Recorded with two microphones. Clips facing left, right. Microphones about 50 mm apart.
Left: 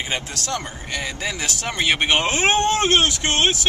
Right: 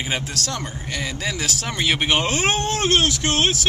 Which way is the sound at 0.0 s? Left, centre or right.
Centre.